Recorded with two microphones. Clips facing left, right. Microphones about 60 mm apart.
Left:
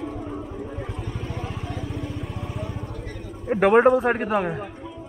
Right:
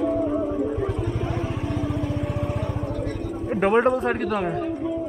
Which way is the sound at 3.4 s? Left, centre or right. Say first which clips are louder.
Left 3 dB; centre.